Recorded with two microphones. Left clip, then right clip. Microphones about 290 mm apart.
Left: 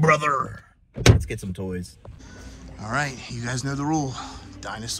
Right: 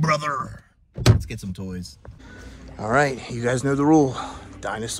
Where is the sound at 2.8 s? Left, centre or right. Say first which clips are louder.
Right 7 dB; centre.